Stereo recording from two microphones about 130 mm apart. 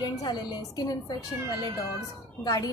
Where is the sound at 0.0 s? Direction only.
35° left (ahead or behind).